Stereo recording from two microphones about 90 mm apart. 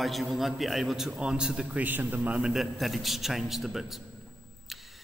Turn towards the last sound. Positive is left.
turn(degrees=0)  # may be behind; listen again after turning